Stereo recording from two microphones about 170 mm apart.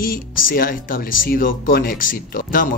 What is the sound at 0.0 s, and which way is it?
Speech, 55° left (ahead or behind).